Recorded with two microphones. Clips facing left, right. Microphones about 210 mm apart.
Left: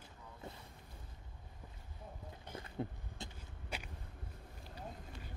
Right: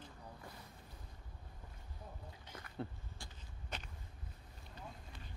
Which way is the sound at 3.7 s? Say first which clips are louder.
Left 2 dB; 10° left (ahead or behind).